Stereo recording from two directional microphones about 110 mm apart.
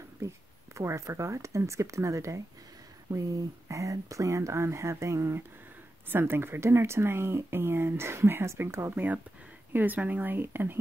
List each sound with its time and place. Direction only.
0.7 s speech: 25° right (ahead or behind)